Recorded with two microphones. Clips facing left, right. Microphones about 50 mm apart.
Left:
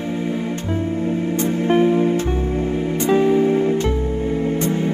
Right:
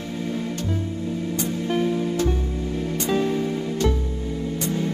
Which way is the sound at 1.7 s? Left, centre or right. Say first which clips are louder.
Left 8 dB; left.